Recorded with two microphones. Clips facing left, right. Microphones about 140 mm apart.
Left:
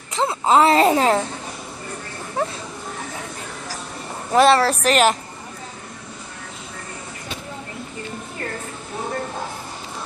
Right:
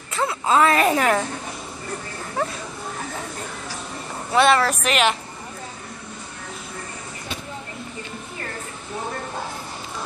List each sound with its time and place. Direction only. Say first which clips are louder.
0.1 s a woman's voice: left 3 dB; 25° left (ahead or behind)
2.4 s a woman's voice: left 2 dB; 30° left (ahead or behind)
4.3 s speech: left 3 dB; 35° left (ahead or behind)